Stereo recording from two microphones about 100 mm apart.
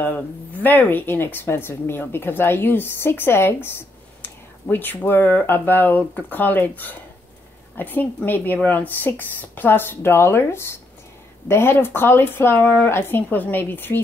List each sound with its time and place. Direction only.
0.0 s speech: 15° left (ahead or behind)
7.7 s a woman's voice: 20° left (ahead or behind)